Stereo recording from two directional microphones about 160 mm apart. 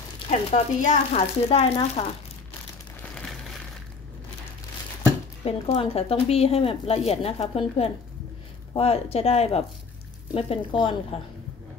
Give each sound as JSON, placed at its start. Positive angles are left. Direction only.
{"t": 0.3, "sound": "speech", "side_deg": 40}
{"t": 5.4, "sound": "speech", "side_deg": 40}